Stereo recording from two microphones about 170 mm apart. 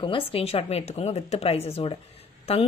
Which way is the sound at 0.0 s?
30° left (ahead or behind).